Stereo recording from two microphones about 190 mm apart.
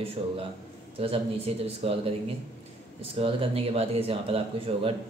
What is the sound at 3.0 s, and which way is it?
Speech, 30° right (ahead or behind).